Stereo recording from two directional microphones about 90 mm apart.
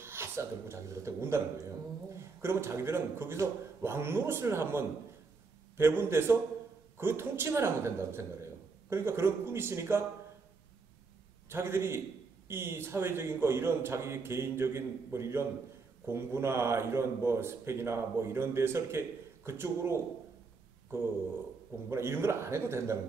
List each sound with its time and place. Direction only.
0.0 s speech: 30° right (ahead or behind)
11.4 s speech: 25° right (ahead or behind)
21.8 s speech: 25° right (ahead or behind)